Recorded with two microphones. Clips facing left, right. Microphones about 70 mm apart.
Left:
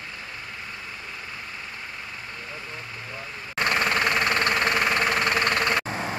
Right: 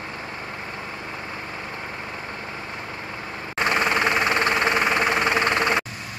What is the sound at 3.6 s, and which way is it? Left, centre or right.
Vehicle, centre.